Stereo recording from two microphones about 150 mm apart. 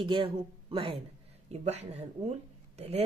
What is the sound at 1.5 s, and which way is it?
Speech, 45° right (ahead or behind).